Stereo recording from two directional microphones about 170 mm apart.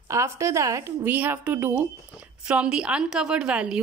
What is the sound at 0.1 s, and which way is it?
A woman's voice, 15° right (ahead or behind).